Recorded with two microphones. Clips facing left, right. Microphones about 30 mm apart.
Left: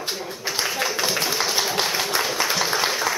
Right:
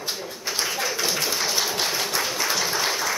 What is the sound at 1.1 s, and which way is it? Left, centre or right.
Tap, centre.